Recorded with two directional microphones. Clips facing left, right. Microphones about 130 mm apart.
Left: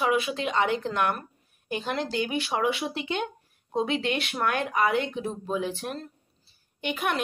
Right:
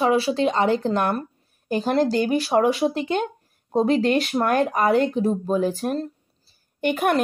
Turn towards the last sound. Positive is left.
turn(degrees=-45)  # may be behind; listen again after turning